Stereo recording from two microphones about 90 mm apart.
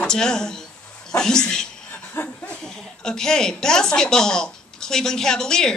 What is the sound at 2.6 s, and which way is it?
A woman's voice, 5° left (ahead or behind).